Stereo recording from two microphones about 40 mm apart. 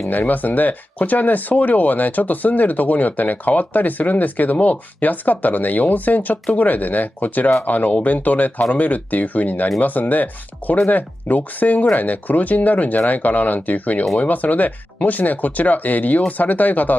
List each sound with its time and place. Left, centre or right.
0.1 s speech: left